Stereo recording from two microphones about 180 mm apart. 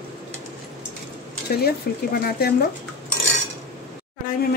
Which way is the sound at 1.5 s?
60° left (ahead or behind).